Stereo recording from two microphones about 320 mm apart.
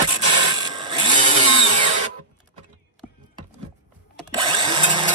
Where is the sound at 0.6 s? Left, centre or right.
Centre.